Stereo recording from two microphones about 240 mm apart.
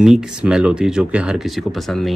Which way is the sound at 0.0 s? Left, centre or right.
Centre.